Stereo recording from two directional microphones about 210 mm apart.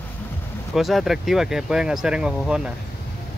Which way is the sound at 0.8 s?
Centre (ahead or behind).